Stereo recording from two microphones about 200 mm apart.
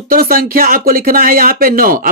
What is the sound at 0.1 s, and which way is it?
Speech, 45° right (ahead or behind).